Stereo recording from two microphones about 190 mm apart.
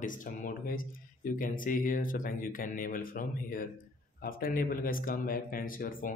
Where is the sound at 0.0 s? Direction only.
45° left (ahead or behind).